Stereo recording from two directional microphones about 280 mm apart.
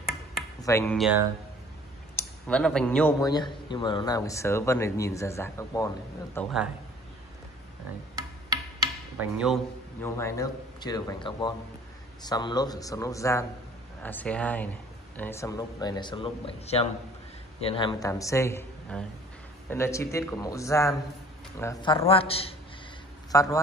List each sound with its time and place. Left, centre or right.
0.6 s a man's voice: centre
6.3 s speech: centre
8.2 s a sound: centre
10.0 s a man's voice: centre